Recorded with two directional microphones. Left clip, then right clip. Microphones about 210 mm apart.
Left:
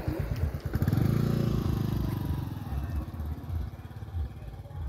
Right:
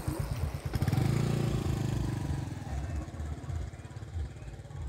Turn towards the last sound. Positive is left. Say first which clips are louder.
# left 1 dB
turn(degrees=35)  # may be behind; listen again after turning